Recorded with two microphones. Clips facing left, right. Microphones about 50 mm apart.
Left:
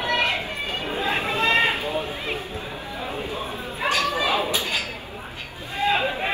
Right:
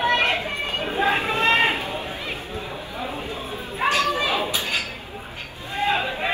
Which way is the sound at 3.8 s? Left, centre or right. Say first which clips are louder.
Right 2 dB; right.